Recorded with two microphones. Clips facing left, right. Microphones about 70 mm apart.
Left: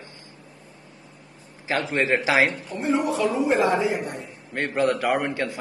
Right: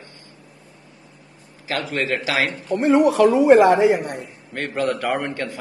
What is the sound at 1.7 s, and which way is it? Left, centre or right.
Speech, left.